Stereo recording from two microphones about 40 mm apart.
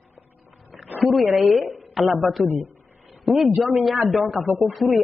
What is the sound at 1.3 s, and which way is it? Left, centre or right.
A woman's voice, centre.